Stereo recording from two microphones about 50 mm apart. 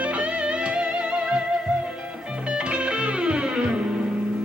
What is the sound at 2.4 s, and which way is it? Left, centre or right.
Music, right.